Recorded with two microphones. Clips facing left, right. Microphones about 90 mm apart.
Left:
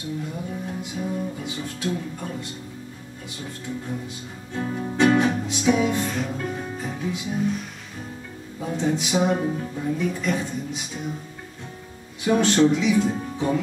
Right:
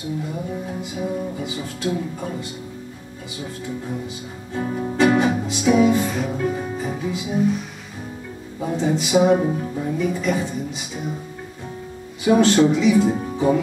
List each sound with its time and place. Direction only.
0.0 s music: 5° right (ahead or behind)
3.3 s speech: 5° right (ahead or behind)
4.6 s music: 10° right (ahead or behind)
8.5 s speech: 5° right (ahead or behind)
12.3 s speech: 5° right (ahead or behind)